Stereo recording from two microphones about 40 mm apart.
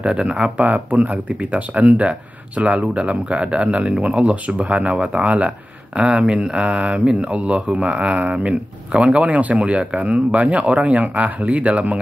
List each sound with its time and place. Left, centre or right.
0.0 s speech: right